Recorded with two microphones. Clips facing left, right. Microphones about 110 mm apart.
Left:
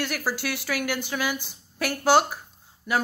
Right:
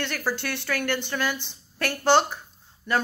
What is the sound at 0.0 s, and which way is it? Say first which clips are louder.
A woman's voice: even; 5° left (ahead or behind).